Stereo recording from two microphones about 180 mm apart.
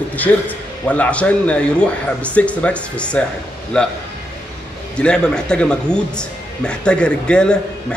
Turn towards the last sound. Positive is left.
turn(degrees=5)  # may be behind; listen again after turning